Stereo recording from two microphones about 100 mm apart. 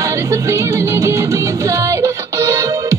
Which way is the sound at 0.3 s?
30° right (ahead or behind).